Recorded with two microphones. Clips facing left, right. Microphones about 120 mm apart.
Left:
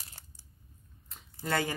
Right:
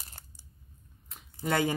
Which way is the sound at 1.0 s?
15° right (ahead or behind).